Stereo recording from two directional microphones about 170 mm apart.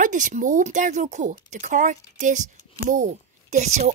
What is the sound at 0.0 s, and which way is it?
Speech, 50° right (ahead or behind).